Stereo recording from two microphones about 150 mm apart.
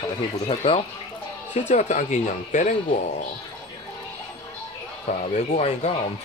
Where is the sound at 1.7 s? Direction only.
50° left (ahead or behind).